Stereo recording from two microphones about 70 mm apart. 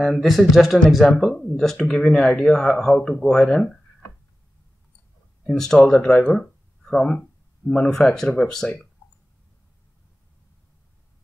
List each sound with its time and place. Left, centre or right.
0.0 s speech: centre
5.5 s speech: centre